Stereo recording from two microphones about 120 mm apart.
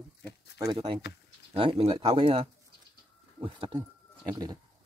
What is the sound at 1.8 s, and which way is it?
Speech, 45° right (ahead or behind).